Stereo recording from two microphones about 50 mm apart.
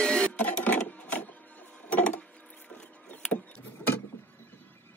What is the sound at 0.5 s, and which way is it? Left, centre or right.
Sewing machine, left.